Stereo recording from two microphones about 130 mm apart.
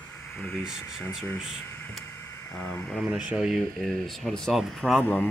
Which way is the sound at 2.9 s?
5° right (ahead or behind).